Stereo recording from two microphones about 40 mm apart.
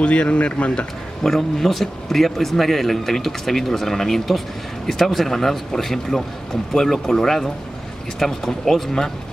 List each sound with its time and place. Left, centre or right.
0.0 s speech: left
1.2 s a man's voice: centre